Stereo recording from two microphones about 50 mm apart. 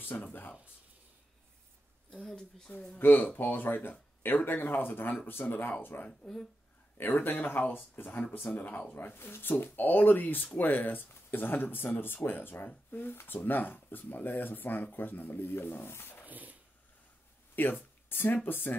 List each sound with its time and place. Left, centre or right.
0.0 s speech: left
2.2 s speech: centre
3.0 s speech: left
6.0 s speech: centre
7.0 s speech: left
8.9 s speech: left
16.3 s a sound: right
17.6 s speech: left